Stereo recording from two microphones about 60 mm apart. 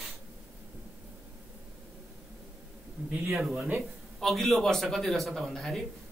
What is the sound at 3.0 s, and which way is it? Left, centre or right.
Speech, right.